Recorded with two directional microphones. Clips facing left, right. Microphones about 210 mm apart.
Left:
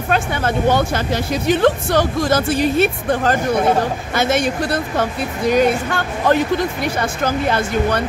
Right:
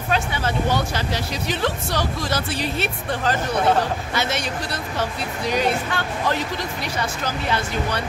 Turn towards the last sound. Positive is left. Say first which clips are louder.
# left 6 dB
turn(degrees=50)  # may be behind; listen again after turning